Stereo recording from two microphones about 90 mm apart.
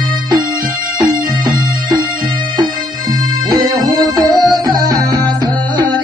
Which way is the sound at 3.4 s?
45° right (ahead or behind).